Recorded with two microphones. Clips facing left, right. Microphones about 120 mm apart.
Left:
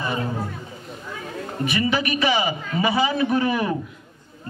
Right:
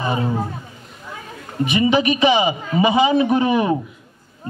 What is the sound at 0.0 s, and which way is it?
Speech, 20° right (ahead or behind).